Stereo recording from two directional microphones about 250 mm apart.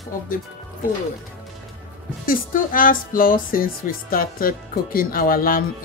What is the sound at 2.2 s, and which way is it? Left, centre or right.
Speech, left.